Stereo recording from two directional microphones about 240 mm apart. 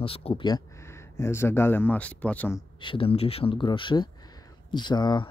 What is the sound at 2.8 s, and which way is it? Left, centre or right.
Speech, left.